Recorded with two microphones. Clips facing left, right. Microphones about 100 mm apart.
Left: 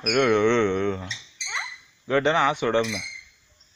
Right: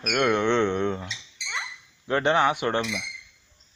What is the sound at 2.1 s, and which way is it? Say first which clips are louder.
Speech: left 1 dB; 15° right (ahead or behind).